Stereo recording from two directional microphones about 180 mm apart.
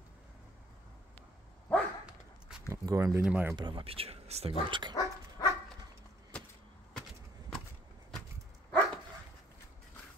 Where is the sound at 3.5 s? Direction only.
25° right (ahead or behind).